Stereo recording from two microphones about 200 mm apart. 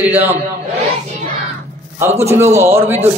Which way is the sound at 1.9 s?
15° right (ahead or behind).